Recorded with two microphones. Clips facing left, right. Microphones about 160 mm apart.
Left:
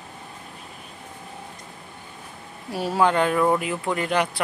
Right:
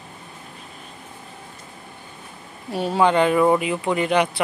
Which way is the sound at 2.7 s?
5° left (ahead or behind).